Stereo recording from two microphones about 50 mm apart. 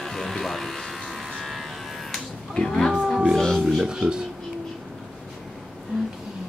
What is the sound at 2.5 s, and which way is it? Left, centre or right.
Speech, centre.